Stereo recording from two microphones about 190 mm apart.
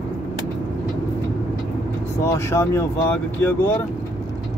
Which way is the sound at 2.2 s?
15° left (ahead or behind).